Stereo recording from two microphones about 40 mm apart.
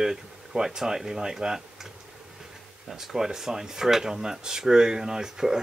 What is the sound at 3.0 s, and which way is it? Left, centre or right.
Speech, centre.